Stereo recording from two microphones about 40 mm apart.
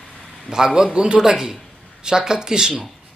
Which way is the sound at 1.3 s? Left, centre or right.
Centre.